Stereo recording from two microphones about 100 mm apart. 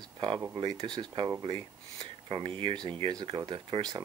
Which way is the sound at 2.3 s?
60° right (ahead or behind).